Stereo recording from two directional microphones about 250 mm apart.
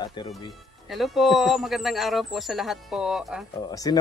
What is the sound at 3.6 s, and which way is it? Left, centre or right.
Speech, centre.